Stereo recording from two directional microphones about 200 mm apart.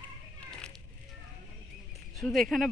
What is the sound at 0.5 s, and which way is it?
Children playing, 5° left (ahead or behind).